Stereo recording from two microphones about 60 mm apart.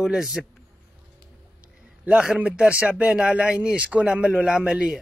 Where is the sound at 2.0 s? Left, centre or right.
Centre.